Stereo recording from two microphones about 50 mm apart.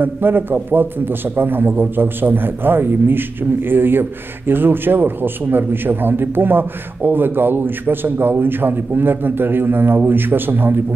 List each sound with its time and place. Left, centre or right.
0.0 s a man's voice: right